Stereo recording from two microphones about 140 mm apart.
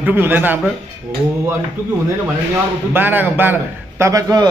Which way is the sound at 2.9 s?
15° right (ahead or behind).